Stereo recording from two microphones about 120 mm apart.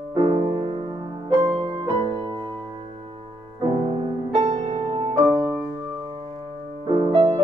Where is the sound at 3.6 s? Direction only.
55° right (ahead or behind).